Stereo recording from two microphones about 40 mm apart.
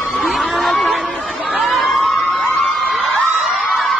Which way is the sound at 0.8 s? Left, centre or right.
Centre.